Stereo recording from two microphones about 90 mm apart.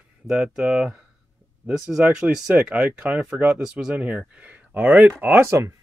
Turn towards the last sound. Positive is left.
turn(degrees=-30)  # may be behind; listen again after turning